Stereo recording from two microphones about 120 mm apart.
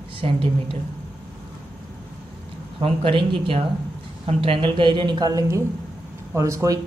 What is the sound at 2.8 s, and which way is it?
A woman's voice, 50° right (ahead or behind).